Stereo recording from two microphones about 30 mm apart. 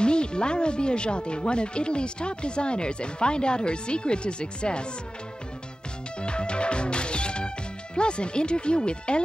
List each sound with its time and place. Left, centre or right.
0.0 s speech: left
6.2 s music: left